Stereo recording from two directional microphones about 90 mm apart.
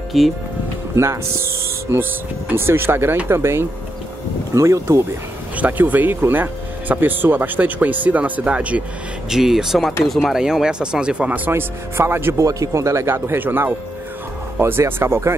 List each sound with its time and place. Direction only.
0.1 s speech: centre (ahead or behind)
0.9 s speech: 30° right (ahead or behind)
5.6 s speech: 20° right (ahead or behind)
9.3 s speech: 5° right (ahead or behind); by 12.4 s 25° right (ahead or behind)
12.4 s speech: 40° right (ahead or behind)